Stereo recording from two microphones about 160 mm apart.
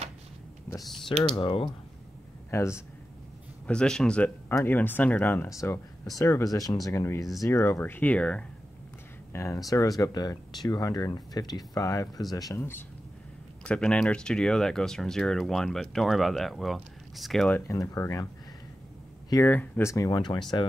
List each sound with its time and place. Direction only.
1.0 s speech: 30° left (ahead or behind)
2.5 s speech: 15° left (ahead or behind)
3.6 s speech: 5° left (ahead or behind)
9.3 s speech: 20° left (ahead or behind); by 17.6 s centre (ahead or behind)
17.6 s speech: 20° left (ahead or behind)
19.2 s speech: 20° left (ahead or behind)